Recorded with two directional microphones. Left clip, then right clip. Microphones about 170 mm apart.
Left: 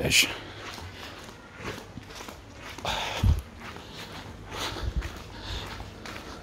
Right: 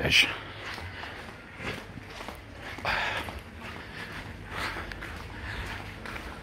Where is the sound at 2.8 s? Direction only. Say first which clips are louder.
Right 2 dB; 65° left (ahead or behind).